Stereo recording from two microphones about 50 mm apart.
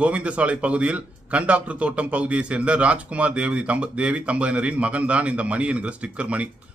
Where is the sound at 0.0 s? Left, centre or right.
Right.